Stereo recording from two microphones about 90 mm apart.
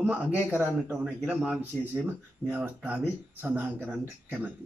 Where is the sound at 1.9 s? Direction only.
25° right (ahead or behind).